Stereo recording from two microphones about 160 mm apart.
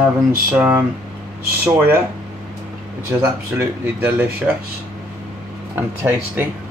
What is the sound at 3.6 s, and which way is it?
Speech, 15° right (ahead or behind).